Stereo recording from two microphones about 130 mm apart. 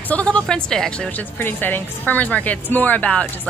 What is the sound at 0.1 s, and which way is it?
A woman's voice, 10° left (ahead or behind).